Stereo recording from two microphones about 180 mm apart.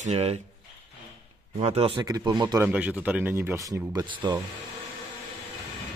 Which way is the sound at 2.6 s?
5° right (ahead or behind).